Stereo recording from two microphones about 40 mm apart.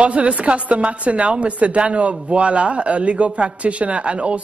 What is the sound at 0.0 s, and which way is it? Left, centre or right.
A woman's voice, right.